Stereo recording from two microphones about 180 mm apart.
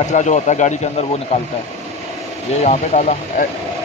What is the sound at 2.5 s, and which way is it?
Speech, 40° left (ahead or behind).